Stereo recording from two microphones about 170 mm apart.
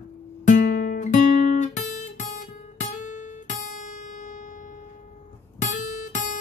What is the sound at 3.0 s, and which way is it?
Music, 45° left (ahead or behind).